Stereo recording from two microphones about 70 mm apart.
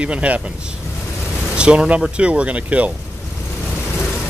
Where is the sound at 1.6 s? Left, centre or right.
Centre.